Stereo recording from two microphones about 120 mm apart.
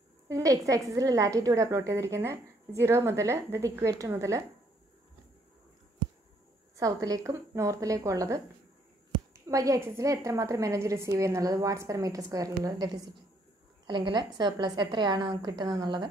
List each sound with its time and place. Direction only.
0.3 s a woman's voice: 30° right (ahead or behind)
6.8 s a woman's voice: 30° right (ahead or behind)